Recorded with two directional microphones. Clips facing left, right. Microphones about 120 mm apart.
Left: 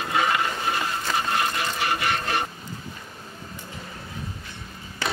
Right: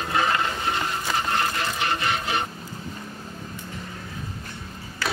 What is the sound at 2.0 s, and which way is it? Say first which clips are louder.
Printer: even; centre (ahead or behind).